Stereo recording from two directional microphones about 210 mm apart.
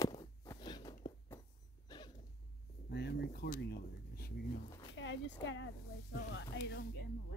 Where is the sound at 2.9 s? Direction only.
50° left (ahead or behind).